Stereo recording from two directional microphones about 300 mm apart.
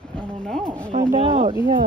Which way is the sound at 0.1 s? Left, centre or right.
Centre.